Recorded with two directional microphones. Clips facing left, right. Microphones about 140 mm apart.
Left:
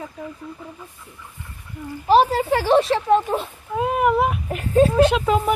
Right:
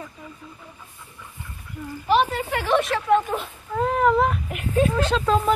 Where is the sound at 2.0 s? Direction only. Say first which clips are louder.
Left 5 dB; 35° left (ahead or behind).